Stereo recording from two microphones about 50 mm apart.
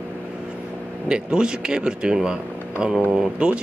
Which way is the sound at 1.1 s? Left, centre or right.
Centre.